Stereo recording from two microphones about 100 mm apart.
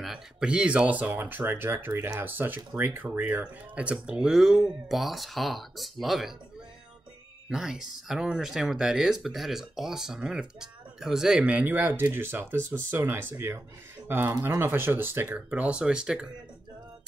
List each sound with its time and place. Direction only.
0.0 s speech: 5° right (ahead or behind)
7.4 s speech: 5° right (ahead or behind)